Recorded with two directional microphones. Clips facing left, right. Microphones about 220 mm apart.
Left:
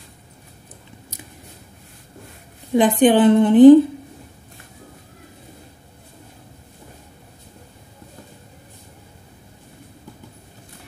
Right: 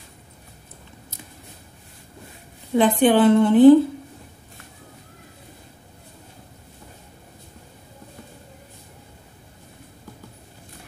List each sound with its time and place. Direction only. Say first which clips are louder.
2.7 s a woman's voice: left 2 dB; 15° left (ahead or behind)